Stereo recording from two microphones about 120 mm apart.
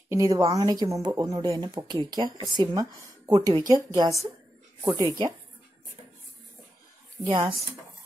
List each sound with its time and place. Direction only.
0.1 s speech: 30° right (ahead or behind)
7.2 s speech: 40° right (ahead or behind)